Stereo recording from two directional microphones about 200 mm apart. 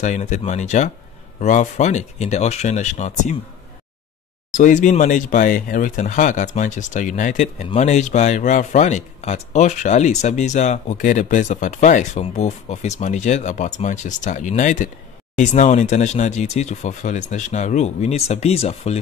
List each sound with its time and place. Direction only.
0.0 s speech: 35° left (ahead or behind)
4.6 s speech: 40° left (ahead or behind)